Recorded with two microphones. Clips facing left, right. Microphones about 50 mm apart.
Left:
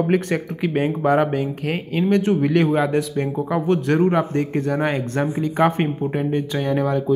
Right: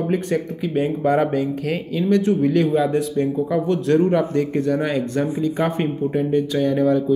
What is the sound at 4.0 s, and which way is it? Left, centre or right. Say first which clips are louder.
Speech: right 1 dB; left.